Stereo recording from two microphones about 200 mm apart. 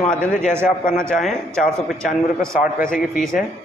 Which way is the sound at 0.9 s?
5° left (ahead or behind).